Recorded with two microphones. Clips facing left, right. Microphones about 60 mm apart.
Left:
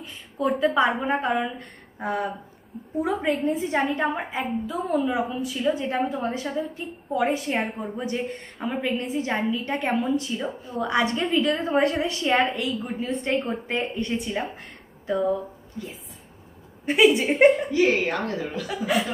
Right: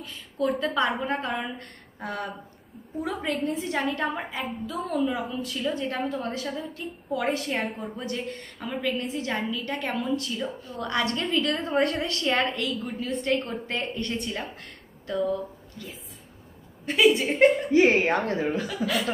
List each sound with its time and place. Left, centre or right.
0.0 s a woman's voice: centre
11.6 s a woman's voice: centre
12.1 s a woman's voice: centre
17.6 s speech: right
18.9 s a woman's voice: left